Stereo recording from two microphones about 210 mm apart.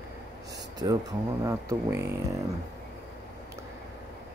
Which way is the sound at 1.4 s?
15° right (ahead or behind).